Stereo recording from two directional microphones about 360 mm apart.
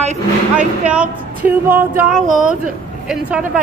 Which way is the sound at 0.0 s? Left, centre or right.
Centre.